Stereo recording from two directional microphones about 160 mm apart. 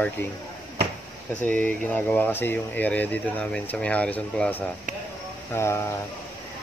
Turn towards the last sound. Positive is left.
turn(degrees=15)  # may be behind; listen again after turning